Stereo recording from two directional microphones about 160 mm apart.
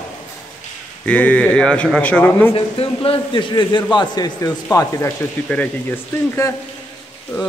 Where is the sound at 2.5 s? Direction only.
35° left (ahead or behind); by 5.7 s 10° left (ahead or behind).